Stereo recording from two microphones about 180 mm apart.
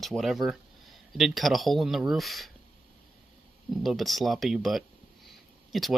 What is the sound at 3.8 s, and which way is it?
Speech, centre (ahead or behind).